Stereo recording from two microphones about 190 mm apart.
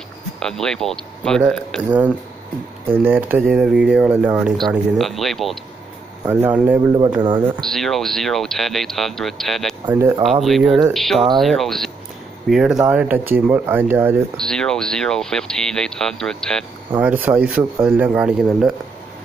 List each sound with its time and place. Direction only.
0.4 s speech: 5° left (ahead or behind)
7.2 s speech: 25° right (ahead or behind)
7.6 s speech: centre (ahead or behind)
9.8 s speech: 20° right (ahead or behind)
10.4 s speech: centre (ahead or behind)
14.3 s speech: 5° left (ahead or behind)
16.9 s speech: 10° right (ahead or behind)